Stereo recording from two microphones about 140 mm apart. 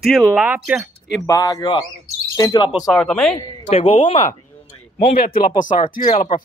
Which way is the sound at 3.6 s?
40° left (ahead or behind).